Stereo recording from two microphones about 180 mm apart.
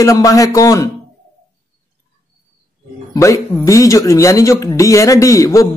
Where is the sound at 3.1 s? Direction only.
15° left (ahead or behind).